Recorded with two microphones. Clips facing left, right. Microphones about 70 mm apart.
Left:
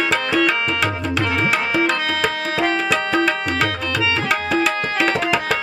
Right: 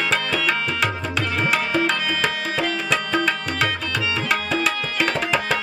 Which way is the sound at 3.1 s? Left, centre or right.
Centre.